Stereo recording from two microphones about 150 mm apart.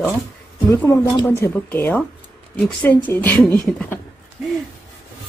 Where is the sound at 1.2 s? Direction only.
15° left (ahead or behind).